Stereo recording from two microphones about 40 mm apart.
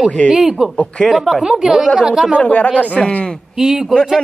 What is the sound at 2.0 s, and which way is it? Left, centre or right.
Speech, centre.